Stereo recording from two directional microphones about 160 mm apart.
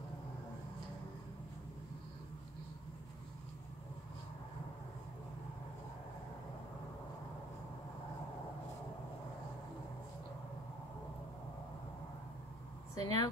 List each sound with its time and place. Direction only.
12.9 s speech: 20° left (ahead or behind)